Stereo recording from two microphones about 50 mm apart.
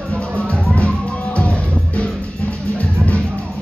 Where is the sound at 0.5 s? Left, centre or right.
Left.